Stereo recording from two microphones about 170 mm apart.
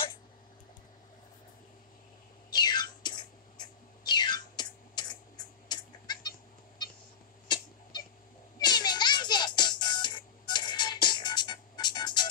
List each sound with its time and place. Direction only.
2.5 s a sound: 25° left (ahead or behind)
7.4 s cat: 25° left (ahead or behind)
8.5 s music: 25° left (ahead or behind)